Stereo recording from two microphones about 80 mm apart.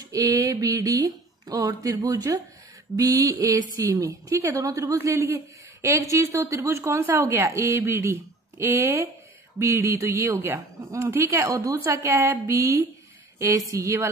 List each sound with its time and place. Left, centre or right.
0.1 s a woman's voice: right